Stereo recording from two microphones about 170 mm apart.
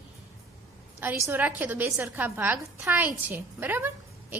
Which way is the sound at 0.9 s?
15° right (ahead or behind).